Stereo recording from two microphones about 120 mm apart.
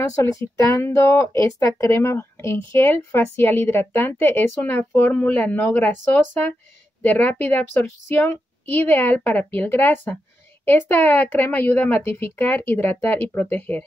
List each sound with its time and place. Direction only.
0.4 s speech: 25° left (ahead or behind)